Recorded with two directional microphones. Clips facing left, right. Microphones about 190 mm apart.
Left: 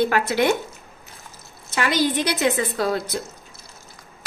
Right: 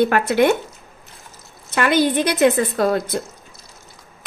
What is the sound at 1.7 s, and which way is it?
A woman's voice, 55° right (ahead or behind).